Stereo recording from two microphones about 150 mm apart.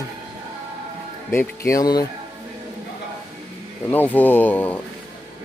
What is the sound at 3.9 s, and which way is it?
Speech, 10° left (ahead or behind).